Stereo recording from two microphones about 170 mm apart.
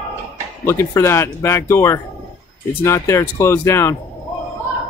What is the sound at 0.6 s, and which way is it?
Speech, 15° left (ahead or behind).